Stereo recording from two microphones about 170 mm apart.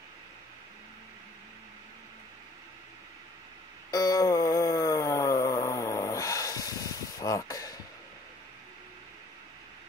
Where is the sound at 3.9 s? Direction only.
20° left (ahead or behind).